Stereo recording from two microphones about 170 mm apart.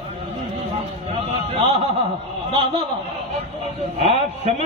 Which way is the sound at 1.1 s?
35° right (ahead or behind).